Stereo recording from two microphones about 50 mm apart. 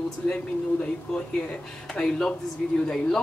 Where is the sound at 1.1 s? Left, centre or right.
Centre.